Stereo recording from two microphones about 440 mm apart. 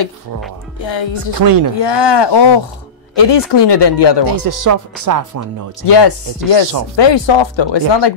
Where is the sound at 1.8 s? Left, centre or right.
Left.